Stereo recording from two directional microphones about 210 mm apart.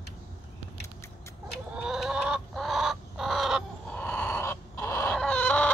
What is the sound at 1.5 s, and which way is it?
Chicken, 5° right (ahead or behind).